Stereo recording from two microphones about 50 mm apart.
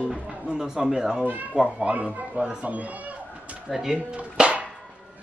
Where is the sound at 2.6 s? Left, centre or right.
Right.